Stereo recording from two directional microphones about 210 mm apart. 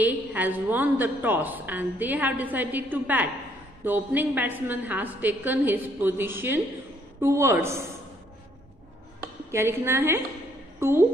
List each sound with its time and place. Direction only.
0.0 s a woman's voice: 10° right (ahead or behind)
9.5 s a woman's voice: 10° right (ahead or behind)